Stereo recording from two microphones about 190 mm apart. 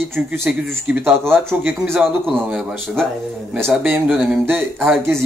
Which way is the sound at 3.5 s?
10° right (ahead or behind).